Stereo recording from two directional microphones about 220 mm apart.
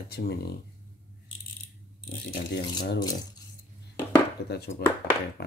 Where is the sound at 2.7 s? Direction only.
45° left (ahead or behind).